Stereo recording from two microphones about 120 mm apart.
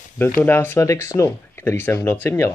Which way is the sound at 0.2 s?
15° left (ahead or behind).